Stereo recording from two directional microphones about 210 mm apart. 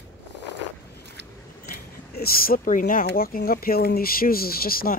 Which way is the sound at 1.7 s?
45° left (ahead or behind).